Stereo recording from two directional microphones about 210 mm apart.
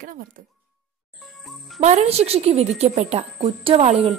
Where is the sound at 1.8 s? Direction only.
30° right (ahead or behind).